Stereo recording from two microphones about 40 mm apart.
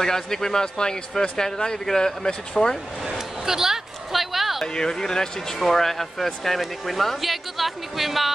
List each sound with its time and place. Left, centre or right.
0.0 s speech: centre
3.1 s a sound: centre
4.7 s speech: centre